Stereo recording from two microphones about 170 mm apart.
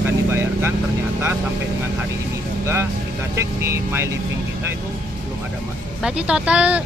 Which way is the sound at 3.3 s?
15° right (ahead or behind).